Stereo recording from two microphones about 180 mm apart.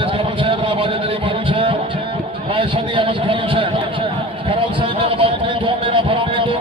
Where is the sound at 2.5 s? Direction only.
30° right (ahead or behind).